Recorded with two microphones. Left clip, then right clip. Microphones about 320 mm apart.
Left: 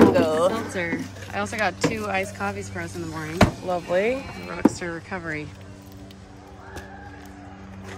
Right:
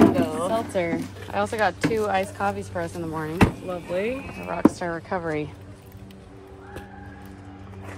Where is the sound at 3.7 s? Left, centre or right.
Centre.